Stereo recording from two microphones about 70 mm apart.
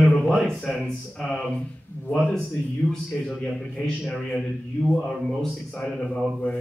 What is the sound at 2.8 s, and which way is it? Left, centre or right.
A man's voice, centre.